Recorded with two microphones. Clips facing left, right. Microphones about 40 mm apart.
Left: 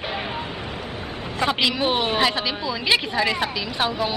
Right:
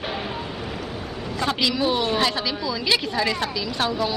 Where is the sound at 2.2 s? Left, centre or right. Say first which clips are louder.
Left 1 dB; left.